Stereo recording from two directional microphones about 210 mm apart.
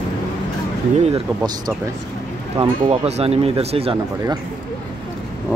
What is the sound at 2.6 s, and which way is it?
Speech, 25° right (ahead or behind).